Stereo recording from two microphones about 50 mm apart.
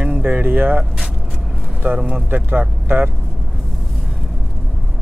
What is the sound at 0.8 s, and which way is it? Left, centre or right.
Vehicle, centre.